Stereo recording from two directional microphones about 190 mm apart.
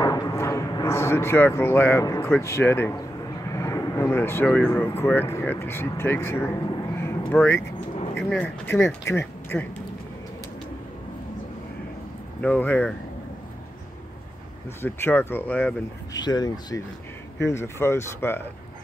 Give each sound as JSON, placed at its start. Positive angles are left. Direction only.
{"t": 0.0, "sound": "speech", "side_deg": 15}
{"t": 12.4, "sound": "speech", "side_deg": 10}
{"t": 14.8, "sound": "speech", "side_deg": 10}
{"t": 16.1, "sound": "speech", "side_deg": 20}